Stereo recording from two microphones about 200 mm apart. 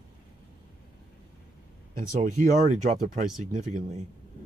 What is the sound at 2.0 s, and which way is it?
Speech, 40° right (ahead or behind).